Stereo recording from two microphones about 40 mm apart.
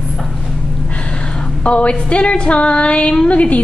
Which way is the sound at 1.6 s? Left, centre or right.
Left.